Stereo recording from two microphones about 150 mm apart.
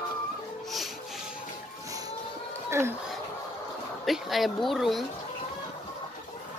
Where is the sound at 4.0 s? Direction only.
Centre (ahead or behind).